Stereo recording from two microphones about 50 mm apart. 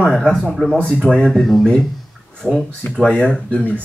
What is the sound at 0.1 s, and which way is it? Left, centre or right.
Speech, centre.